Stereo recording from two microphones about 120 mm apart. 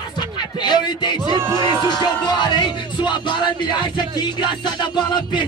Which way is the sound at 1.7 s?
35° left (ahead or behind).